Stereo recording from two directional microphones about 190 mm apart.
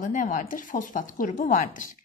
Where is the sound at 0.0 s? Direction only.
45° left (ahead or behind).